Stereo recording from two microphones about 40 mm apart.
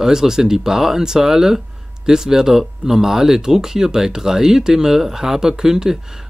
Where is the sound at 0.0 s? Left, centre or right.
Centre.